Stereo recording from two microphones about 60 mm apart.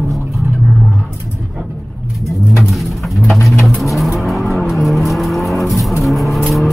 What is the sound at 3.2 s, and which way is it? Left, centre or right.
Music, centre.